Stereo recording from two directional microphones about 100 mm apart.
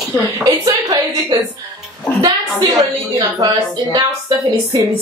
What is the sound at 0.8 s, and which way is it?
A woman's voice, 40° right (ahead or behind).